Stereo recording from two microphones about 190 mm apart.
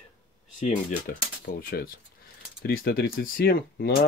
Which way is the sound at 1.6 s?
55° left (ahead or behind).